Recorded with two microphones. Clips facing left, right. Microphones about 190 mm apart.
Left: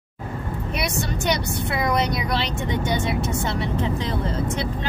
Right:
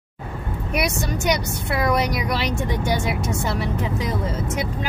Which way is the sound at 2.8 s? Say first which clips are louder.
Even; 10° right (ahead or behind).